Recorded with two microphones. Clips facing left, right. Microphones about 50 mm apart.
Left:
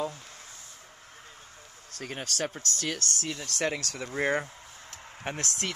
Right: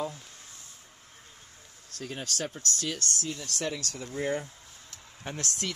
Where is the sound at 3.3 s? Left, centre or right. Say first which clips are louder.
Left 5 dB; left.